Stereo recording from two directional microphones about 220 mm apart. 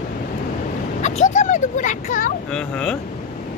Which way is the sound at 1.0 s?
35° left (ahead or behind).